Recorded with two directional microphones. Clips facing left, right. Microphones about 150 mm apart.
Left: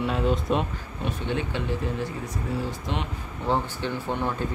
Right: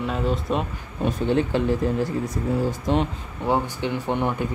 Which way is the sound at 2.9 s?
45° right (ahead or behind).